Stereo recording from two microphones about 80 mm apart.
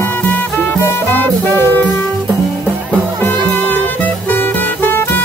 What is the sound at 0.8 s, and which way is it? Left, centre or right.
Music, left.